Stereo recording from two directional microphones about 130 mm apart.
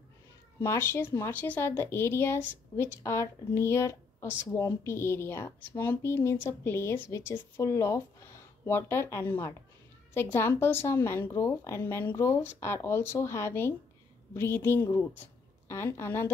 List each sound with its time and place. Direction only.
0.6 s speech: 20° left (ahead or behind)